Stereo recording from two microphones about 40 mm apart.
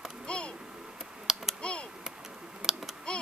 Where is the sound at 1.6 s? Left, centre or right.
Left.